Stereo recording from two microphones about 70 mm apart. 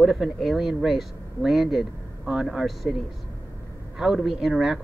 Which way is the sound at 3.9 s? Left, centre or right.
Centre.